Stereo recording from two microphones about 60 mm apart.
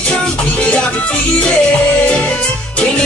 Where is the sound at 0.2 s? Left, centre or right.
Centre.